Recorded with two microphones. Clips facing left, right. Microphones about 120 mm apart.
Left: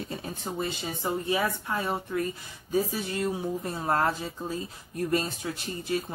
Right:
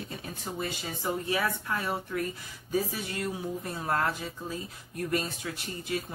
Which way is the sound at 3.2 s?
30° left (ahead or behind).